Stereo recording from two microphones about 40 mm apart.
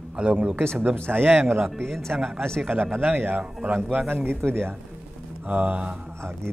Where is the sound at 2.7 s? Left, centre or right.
Right.